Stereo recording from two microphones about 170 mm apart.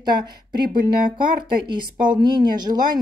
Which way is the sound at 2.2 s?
25° right (ahead or behind).